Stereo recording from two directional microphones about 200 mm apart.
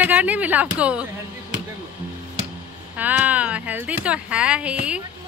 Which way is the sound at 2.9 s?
10° right (ahead or behind).